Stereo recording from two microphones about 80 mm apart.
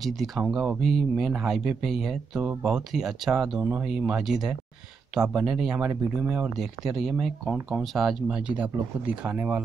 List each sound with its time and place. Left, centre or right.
0.5 s speech: centre
5.8 s speech: centre
6.6 s speech: centre
8.4 s speech: centre